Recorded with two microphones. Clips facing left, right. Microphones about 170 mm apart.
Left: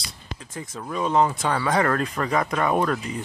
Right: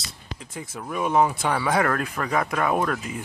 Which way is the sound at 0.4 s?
10° right (ahead or behind).